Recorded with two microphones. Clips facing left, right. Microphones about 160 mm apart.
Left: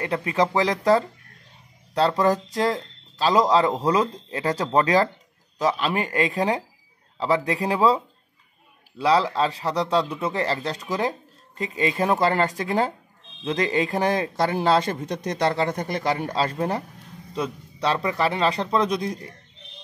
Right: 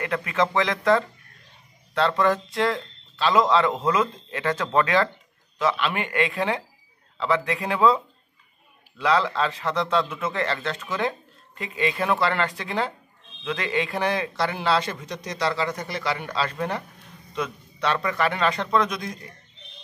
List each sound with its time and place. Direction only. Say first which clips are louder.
0.0 s a man's voice: left 2 dB; 30° left (ahead or behind)